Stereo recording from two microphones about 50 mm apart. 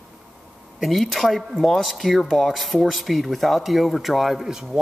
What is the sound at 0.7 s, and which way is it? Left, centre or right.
Speech, centre.